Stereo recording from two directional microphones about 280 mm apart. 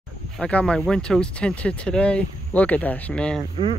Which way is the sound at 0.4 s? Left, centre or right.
Centre.